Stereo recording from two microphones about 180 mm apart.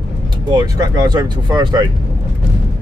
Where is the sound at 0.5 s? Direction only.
20° right (ahead or behind).